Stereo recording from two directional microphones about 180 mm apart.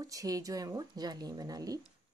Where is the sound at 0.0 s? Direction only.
20° right (ahead or behind).